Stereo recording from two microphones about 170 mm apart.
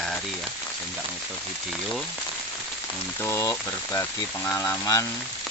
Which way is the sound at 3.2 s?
15° left (ahead or behind).